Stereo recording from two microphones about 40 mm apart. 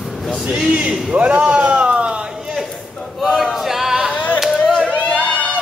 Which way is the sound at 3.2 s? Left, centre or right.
Centre.